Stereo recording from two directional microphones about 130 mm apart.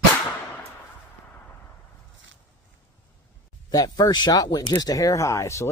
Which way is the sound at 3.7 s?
30° left (ahead or behind).